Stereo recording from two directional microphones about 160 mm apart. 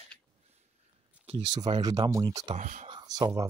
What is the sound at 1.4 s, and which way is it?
Speech, 25° right (ahead or behind).